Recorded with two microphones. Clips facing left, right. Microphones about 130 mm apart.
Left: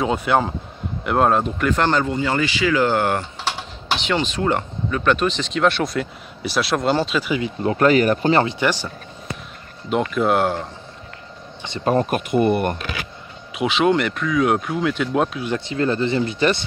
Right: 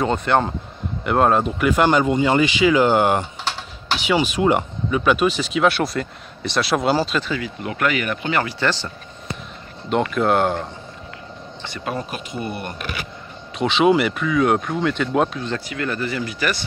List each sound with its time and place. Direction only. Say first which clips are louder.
0.0 s speech: even; 5° left (ahead or behind)
7.2 s speech: left 3 dB; 20° left (ahead or behind)
7.6 s speech: left 8 dB; 30° left (ahead or behind)
8.5 s speech: left 1 dB; 15° left (ahead or behind)
9.8 s speech: even; centre (ahead or behind)
11.8 s speech: left 9 dB; 45° left (ahead or behind)
13.6 s speech: right 2 dB; centre (ahead or behind)
15.6 s speech: left 5 dB; 30° left (ahead or behind)